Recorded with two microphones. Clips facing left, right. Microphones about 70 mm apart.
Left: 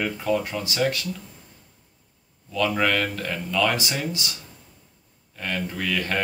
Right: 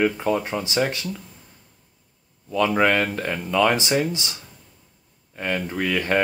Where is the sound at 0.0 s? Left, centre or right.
Right.